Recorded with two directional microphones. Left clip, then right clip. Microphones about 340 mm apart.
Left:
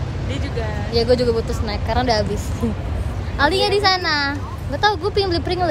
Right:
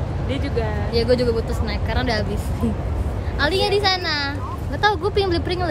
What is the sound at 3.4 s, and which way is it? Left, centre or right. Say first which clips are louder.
Speech: left 3 dB; centre.